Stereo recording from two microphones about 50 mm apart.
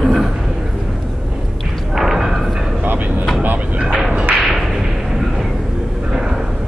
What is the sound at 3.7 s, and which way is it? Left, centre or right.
Music, right.